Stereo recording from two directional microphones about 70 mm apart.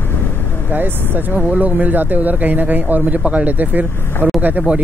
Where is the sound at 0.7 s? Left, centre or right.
Right.